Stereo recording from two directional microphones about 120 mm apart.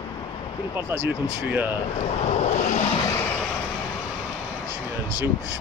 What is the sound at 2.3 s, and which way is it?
Vehicle, 65° left (ahead or behind).